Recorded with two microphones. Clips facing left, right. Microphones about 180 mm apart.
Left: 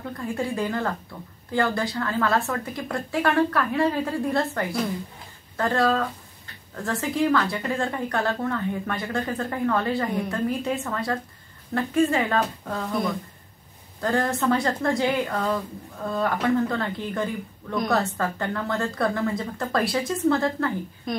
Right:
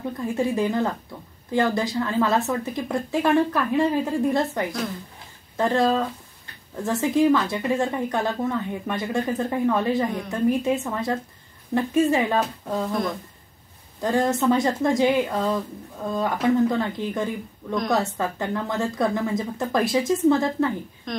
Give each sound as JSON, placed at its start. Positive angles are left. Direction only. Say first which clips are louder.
{"t": 0.0, "sound": "speech", "louder": "right 4 dB", "side_deg": -20}
{"t": 14.0, "sound": "speech", "louder": "right 3 dB", "side_deg": -20}
{"t": 21.1, "sound": "speech", "louder": "left 1 dB", "side_deg": 5}